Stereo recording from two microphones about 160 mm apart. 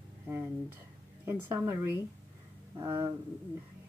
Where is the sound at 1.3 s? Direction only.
15° right (ahead or behind).